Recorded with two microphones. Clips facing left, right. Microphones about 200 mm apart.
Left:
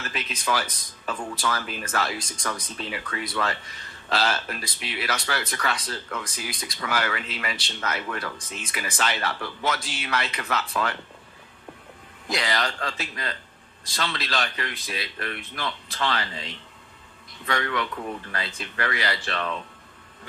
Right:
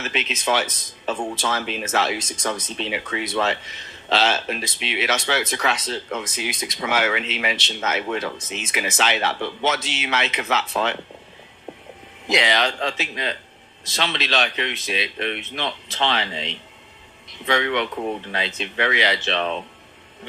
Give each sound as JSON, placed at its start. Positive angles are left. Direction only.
{"t": 0.0, "sound": "speech", "side_deg": -20}
{"t": 12.3, "sound": "speech", "side_deg": -25}